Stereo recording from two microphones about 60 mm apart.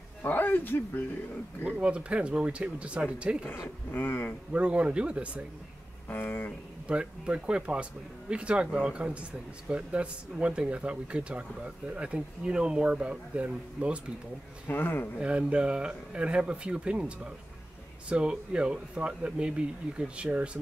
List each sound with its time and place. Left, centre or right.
0.2 s speech: left
1.6 s speech: right
3.6 s speech: left
4.5 s speech: right
6.0 s speech: left
6.9 s speech: centre
14.7 s speech: left
15.1 s speech: centre